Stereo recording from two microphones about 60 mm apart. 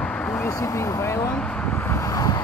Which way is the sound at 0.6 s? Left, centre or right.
Left.